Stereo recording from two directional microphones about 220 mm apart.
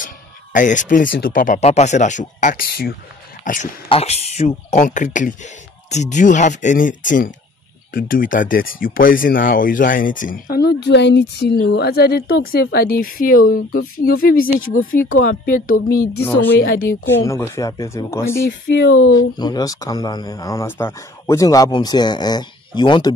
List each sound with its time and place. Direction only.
0.0 s music: 35° left (ahead or behind)
1.1 s speech: 40° left (ahead or behind)
17.0 s speech: 10° left (ahead or behind)
18.8 s speech: 65° left (ahead or behind)
19.1 s speech: 20° left (ahead or behind)